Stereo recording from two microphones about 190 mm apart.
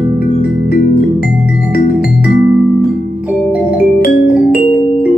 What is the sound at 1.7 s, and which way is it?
Music, 50° left (ahead or behind).